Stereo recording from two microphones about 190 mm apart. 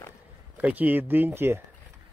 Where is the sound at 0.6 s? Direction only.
10° right (ahead or behind).